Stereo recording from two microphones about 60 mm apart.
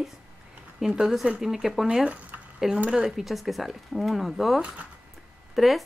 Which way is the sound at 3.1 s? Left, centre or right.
Centre.